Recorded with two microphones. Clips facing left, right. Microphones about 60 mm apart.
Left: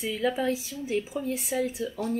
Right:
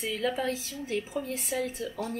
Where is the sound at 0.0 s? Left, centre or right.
Centre.